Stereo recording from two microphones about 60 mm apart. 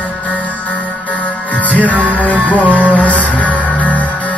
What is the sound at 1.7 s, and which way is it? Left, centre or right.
Music, left.